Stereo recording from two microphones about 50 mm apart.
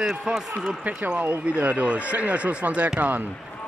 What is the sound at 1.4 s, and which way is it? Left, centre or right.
Speech, right.